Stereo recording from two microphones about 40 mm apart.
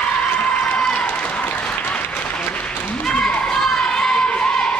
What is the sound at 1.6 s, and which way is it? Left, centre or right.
Applause, left.